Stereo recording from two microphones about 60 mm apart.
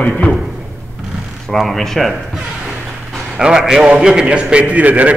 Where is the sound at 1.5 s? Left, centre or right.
Centre.